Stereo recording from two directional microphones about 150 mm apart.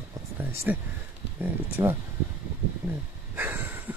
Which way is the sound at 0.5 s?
15° right (ahead or behind).